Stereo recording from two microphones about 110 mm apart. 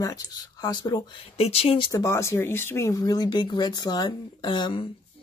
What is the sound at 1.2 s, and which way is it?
Speech, 65° left (ahead or behind).